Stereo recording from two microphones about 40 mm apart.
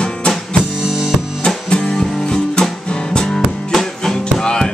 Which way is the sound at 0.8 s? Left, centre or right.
Centre.